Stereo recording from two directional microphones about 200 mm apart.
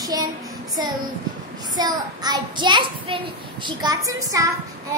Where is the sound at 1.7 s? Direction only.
20° right (ahead or behind).